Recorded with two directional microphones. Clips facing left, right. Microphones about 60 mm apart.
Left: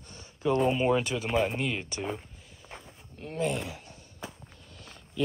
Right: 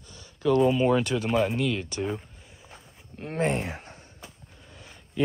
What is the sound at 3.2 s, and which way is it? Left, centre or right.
Speech, right.